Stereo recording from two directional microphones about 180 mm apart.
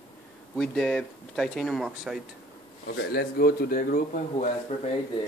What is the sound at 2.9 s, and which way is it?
Speech, 65° left (ahead or behind).